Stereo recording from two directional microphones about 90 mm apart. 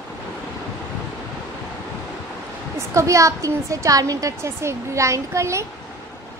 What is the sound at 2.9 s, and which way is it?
A woman's voice, 35° right (ahead or behind).